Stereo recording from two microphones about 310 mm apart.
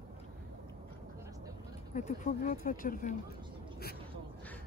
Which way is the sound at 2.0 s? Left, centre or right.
Left.